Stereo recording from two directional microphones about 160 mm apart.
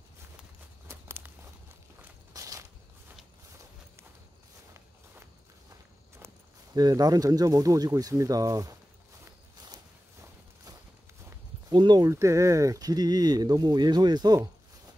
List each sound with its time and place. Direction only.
0.8 s a sound: 15° right (ahead or behind)
2.0 s walk: 20° right (ahead or behind)
6.1 s speech: 20° right (ahead or behind)
11.7 s speech: 25° right (ahead or behind)